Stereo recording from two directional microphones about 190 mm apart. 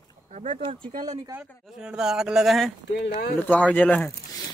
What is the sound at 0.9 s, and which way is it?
Speech, 45° right (ahead or behind).